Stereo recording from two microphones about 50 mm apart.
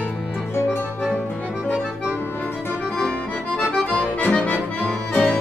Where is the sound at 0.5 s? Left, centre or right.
Left.